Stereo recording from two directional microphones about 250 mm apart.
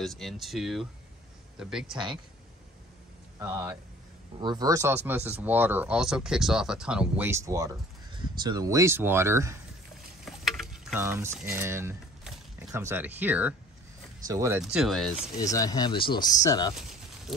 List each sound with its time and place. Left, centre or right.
0.0 s speech: centre
3.3 s speech: centre
10.2 s a sound: centre
11.5 s speech: centre
14.6 s speech: centre
15.3 s speech: centre